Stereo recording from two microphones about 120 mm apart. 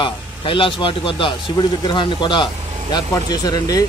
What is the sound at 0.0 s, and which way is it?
Speech, 45° left (ahead or behind).